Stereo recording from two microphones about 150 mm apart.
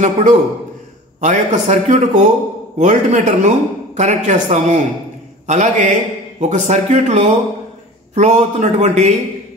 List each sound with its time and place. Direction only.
0.0 s a man's voice: 60° right (ahead or behind)